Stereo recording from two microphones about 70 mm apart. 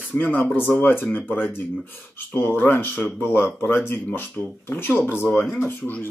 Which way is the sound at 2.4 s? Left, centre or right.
Left.